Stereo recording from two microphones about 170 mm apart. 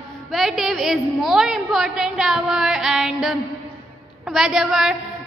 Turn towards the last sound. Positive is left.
turn(degrees=0)  # may be behind; listen again after turning